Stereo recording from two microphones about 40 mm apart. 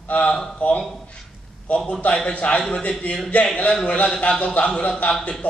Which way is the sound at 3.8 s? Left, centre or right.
Left.